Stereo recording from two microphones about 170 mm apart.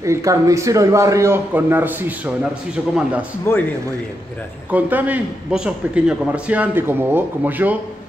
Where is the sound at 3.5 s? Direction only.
15° left (ahead or behind).